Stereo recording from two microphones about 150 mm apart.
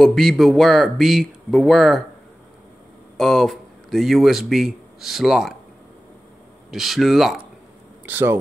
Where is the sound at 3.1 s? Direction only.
Centre (ahead or behind).